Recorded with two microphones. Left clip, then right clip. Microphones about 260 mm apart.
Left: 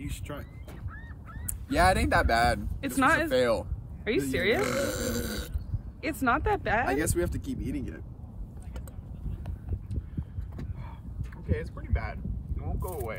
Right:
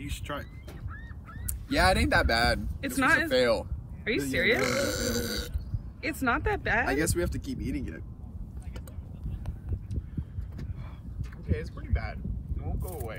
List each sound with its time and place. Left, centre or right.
0.0 s speech: centre
1.7 s speech: centre
11.4 s a sound: left